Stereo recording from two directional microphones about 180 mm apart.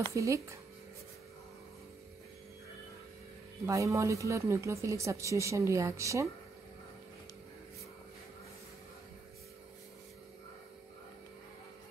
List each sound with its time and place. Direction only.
0.1 s speech: 15° right (ahead or behind)
3.6 s speech: 15° right (ahead or behind)